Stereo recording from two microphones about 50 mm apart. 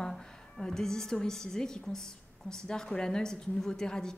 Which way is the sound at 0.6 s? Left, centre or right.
Centre.